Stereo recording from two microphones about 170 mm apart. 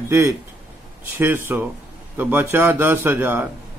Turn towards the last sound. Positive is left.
turn(degrees=-10)  # may be behind; listen again after turning